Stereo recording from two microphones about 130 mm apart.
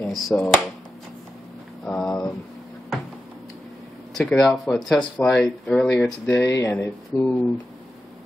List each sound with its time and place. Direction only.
0.0 s speech: 5° left (ahead or behind)
1.9 s a sound: 5° left (ahead or behind)
4.1 s speech: 5° left (ahead or behind)
6.3 s speech: 25° left (ahead or behind)